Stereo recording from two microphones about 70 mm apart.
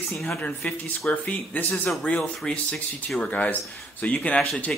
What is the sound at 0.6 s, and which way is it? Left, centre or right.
Speech, left.